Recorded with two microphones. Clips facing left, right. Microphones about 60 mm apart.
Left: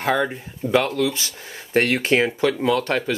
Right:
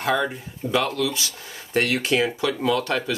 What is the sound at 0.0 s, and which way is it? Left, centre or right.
Speech, left.